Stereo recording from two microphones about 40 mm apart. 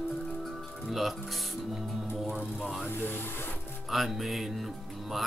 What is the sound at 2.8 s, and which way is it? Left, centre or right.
Speech, left.